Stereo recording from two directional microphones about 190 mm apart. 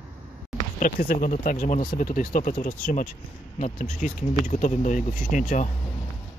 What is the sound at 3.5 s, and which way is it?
Speech, 35° left (ahead or behind).